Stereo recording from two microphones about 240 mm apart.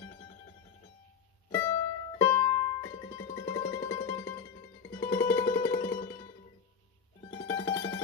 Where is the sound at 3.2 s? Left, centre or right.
Centre.